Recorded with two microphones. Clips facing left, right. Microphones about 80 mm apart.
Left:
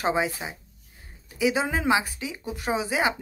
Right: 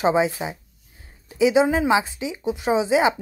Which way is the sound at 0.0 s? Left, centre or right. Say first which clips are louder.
Right 6 dB; right.